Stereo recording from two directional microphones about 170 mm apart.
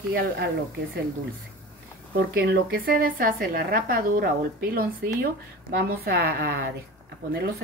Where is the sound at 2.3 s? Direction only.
60° right (ahead or behind).